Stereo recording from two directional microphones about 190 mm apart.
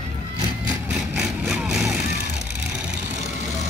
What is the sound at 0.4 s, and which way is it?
Vehicle, 15° right (ahead or behind).